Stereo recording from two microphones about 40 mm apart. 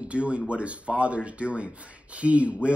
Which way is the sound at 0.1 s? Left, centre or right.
Right.